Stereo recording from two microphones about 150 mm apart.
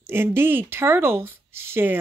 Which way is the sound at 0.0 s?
15° right (ahead or behind).